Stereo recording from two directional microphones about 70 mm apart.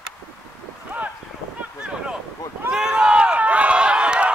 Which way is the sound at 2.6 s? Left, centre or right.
Centre.